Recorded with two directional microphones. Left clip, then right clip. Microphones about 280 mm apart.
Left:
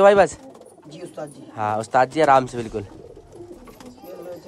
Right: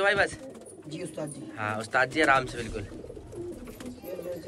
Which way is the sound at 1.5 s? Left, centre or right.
Centre.